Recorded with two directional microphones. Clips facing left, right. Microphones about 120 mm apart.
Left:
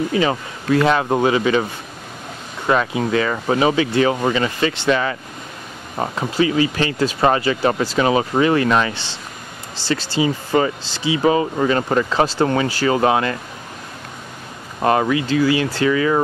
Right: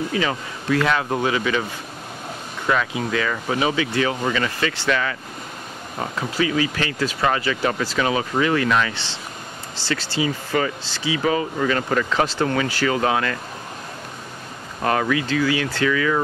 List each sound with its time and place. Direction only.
0.1 s speech: 30° left (ahead or behind)
10.1 s speech: 25° left (ahead or behind)
14.8 s speech: 25° left (ahead or behind)